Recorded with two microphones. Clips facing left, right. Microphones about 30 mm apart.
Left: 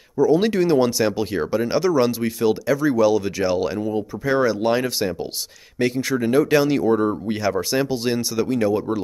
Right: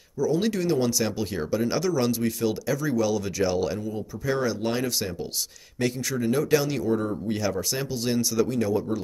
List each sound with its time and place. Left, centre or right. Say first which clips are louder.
0.2 s speech: left 7 dB; left